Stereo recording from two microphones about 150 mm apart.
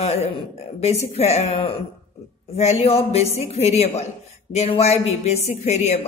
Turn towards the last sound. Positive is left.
turn(degrees=50)  # may be behind; listen again after turning